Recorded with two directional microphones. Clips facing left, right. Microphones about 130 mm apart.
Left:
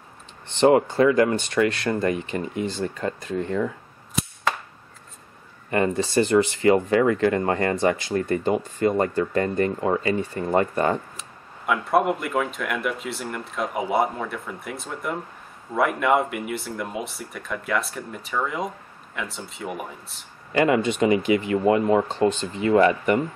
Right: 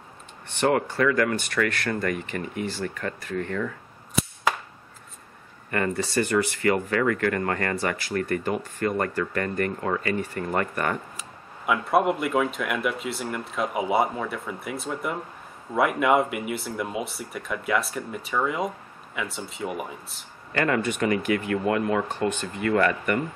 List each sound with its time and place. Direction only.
0.5 s speech: 20° left (ahead or behind)
5.7 s speech: 20° left (ahead or behind)
11.1 s speech: centre (ahead or behind)
20.5 s speech: 15° left (ahead or behind)